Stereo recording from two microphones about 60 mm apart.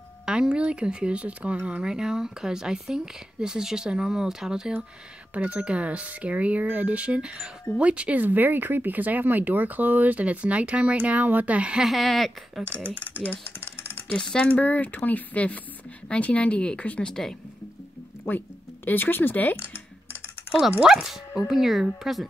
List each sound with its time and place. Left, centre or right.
0.2 s speech: centre
5.3 s speech: right
11.8 s speech: centre
12.9 s typing: left
14.1 s speech: centre
14.5 s speech: left
17.1 s speech: centre
18.3 s speech: left
20.8 s speech: centre